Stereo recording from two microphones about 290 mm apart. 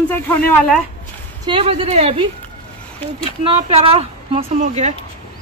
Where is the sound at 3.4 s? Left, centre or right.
Centre.